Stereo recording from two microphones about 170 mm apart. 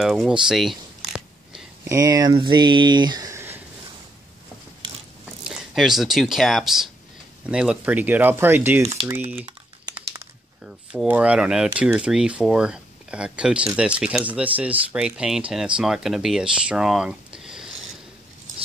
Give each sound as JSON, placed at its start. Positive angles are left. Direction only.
{"t": 0.0, "sound": "a sound", "side_deg": -5}
{"t": 1.9, "sound": "speech", "side_deg": -20}
{"t": 5.4, "sound": "speech", "side_deg": 0}
{"t": 9.5, "sound": "typing", "side_deg": -25}
{"t": 10.6, "sound": "speech", "side_deg": -5}